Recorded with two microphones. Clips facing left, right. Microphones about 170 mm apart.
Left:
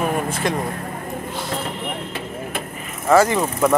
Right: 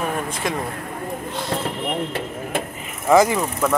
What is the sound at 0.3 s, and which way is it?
Speech, centre (ahead or behind).